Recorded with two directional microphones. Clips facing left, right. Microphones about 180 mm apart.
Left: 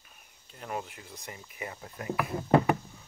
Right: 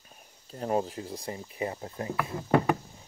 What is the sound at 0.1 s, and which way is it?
Speech, 35° right (ahead or behind).